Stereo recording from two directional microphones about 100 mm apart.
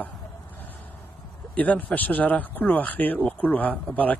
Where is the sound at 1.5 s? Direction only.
15° left (ahead or behind).